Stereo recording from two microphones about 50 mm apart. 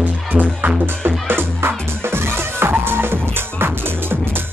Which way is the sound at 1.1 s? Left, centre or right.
Right.